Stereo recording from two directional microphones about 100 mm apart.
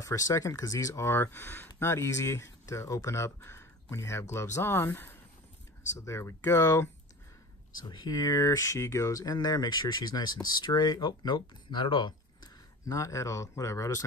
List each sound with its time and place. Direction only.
0.0 s speech: 35° left (ahead or behind)
7.8 s speech: 45° left (ahead or behind)
12.9 s speech: 30° left (ahead or behind)